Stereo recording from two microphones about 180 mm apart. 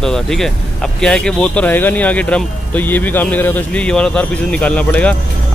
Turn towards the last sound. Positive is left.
turn(degrees=5)  # may be behind; listen again after turning